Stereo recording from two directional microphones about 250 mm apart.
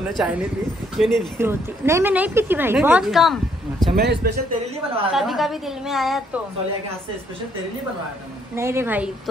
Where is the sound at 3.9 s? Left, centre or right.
Right.